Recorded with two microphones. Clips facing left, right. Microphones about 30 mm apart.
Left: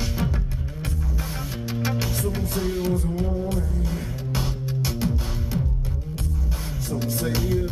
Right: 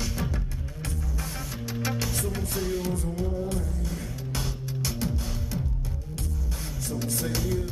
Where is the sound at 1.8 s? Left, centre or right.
Centre.